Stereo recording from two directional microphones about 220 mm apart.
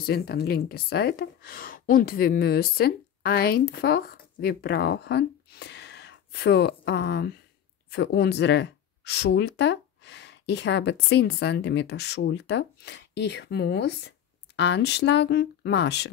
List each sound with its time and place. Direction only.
0.0 s speech: 45° left (ahead or behind)